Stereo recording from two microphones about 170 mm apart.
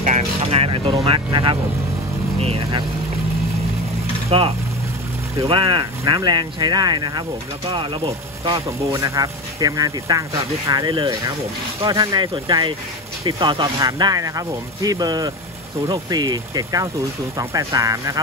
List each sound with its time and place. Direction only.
0.0 s vehicle: 40° right (ahead or behind)
1.0 s speech: 30° right (ahead or behind)
4.3 s speech: 35° right (ahead or behind)
8.6 s speech: 20° right (ahead or behind)